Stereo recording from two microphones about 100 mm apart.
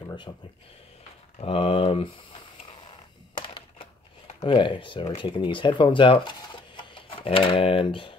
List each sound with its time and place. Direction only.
0.3 s speech: 45° left (ahead or behind)
1.4 s speech: 70° left (ahead or behind)
3.3 s typewriter: 65° left (ahead or behind)
4.4 s speech: 55° left (ahead or behind)